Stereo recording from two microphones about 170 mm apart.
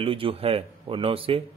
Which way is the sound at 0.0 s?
35° right (ahead or behind).